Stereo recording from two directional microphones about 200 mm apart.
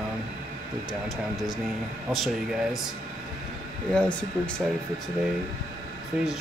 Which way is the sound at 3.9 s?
5° left (ahead or behind).